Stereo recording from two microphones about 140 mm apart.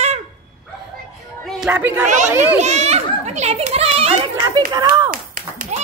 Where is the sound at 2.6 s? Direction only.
50° right (ahead or behind).